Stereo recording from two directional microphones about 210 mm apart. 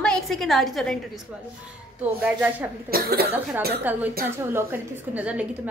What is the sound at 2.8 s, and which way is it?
Speech, 45° right (ahead or behind).